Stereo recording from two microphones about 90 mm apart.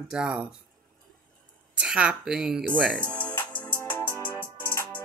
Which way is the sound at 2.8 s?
5° left (ahead or behind).